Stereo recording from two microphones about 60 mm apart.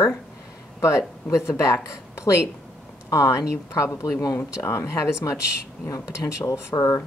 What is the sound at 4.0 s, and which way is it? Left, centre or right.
Speech, left.